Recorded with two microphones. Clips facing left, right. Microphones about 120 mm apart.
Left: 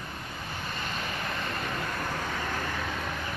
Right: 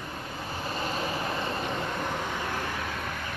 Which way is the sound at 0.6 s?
30° right (ahead or behind).